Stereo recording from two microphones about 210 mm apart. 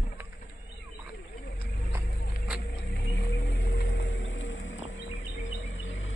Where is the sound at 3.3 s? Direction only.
55° left (ahead or behind).